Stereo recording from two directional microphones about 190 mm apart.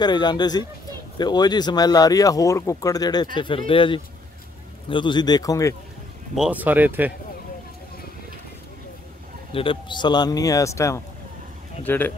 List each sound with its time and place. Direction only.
0.0 s speech: 20° left (ahead or behind)
6.3 s speech: 5° right (ahead or behind)
9.5 s speech: 30° left (ahead or behind); by 12.1 s 10° left (ahead or behind)